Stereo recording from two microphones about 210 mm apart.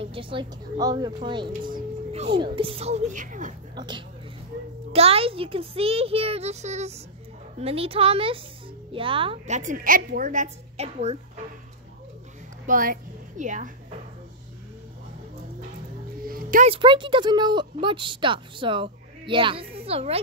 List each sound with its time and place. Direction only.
0.0 s a woman's voice: 25° right (ahead or behind)
3.7 s a woman's voice: 20° right (ahead or behind)
12.6 s a woman's voice: 40° right (ahead or behind)
16.3 s music: 40° right (ahead or behind)
16.6 s speech: 25° right (ahead or behind)